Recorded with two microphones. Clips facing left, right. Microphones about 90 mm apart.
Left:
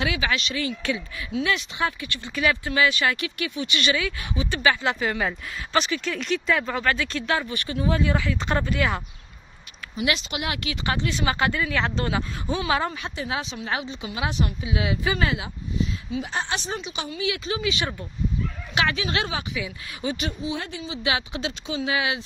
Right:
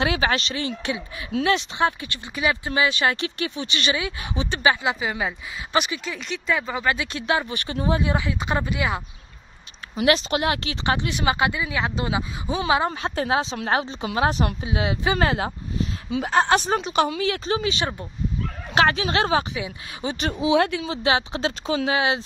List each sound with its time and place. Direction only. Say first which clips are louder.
0.0 s speech: right 3 dB; 35° right (ahead or behind)
4.8 s speech: even; 10° right (ahead or behind)
6.0 s speech: left 2 dB; centre (ahead or behind)
6.8 s speech: even; 15° right (ahead or behind)
9.9 s speech: right 6 dB; 40° right (ahead or behind)
11.0 s speech: right 2 dB; 20° right (ahead or behind)
13.3 s a woman's voice: right 6 dB; 35° right (ahead or behind)
14.6 s speech: right 1 dB; 35° right (ahead or behind)
15.1 s a woman's voice: right 4 dB; 45° right (ahead or behind)
17.2 s speech: right 3 dB; 40° right (ahead or behind)
18.8 s speech: right 5 dB; 40° right (ahead or behind)
20.3 s speech: right 10 dB; 80° right; by 20.9 s 65° right (ahead or behind)
20.9 s speech: right 5 dB; 35° right (ahead or behind)